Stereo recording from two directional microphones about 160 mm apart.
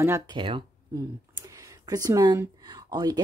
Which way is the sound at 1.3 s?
20° right (ahead or behind).